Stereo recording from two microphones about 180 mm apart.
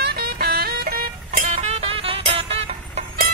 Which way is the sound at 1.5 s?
35° right (ahead or behind).